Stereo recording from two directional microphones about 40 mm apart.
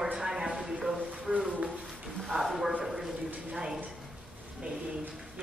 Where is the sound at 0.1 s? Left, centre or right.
Centre.